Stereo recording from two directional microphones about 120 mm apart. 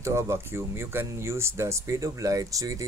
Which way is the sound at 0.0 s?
20° right (ahead or behind).